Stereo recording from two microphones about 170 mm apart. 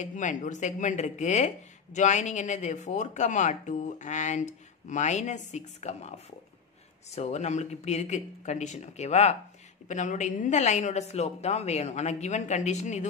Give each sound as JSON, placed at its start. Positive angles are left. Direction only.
{"t": 0.0, "sound": "speech", "side_deg": 45}